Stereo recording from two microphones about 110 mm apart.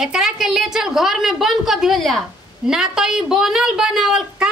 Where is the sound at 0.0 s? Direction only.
5° right (ahead or behind).